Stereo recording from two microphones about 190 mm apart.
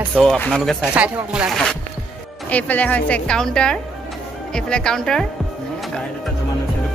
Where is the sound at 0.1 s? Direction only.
Centre (ahead or behind).